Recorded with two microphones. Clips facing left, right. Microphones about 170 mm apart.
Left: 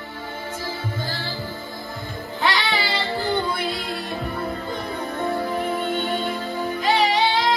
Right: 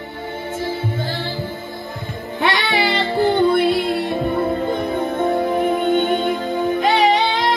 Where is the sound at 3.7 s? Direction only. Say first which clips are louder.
Right 9 dB; 25° right (ahead or behind).